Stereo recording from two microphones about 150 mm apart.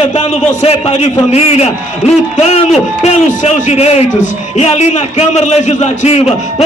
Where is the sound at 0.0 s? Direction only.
50° left (ahead or behind).